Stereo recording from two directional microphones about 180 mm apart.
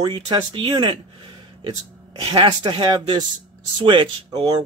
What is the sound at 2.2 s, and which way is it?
Speech, 25° right (ahead or behind).